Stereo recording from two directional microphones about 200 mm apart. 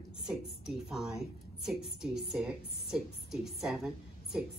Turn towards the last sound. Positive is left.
turn(degrees=-5)  # may be behind; listen again after turning